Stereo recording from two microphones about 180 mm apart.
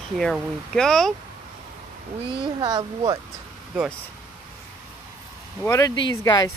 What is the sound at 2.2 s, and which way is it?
Speech, 25° right (ahead or behind).